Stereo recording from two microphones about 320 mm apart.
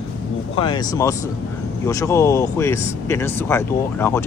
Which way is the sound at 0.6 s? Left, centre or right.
Centre.